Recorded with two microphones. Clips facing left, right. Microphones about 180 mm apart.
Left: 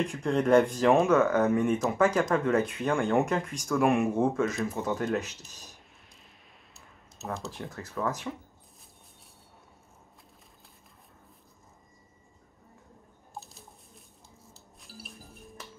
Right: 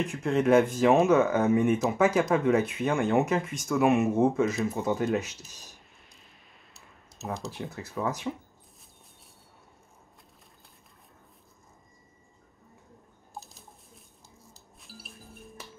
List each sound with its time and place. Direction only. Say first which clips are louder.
0.0 s speech: right 1 dB; 5° right (ahead or behind)
7.4 s speech: right 2 dB; 5° right (ahead or behind)
13.4 s a sound: even; 40° right (ahead or behind)
14.8 s music: left 1 dB; centre (ahead or behind)